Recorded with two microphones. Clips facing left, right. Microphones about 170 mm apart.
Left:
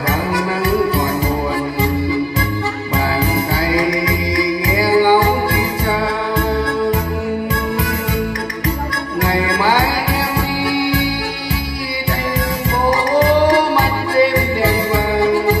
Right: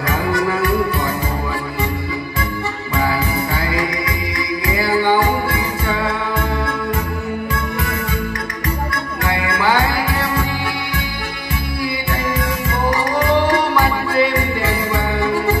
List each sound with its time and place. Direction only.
4.8 s music: 35° left (ahead or behind)
9.2 s music: 35° left (ahead or behind)
12.8 s music: 40° left (ahead or behind)